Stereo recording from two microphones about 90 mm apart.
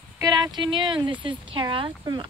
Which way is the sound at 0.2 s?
50° right (ahead or behind).